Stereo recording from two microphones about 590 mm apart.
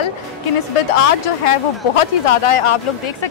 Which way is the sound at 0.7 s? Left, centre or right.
Left.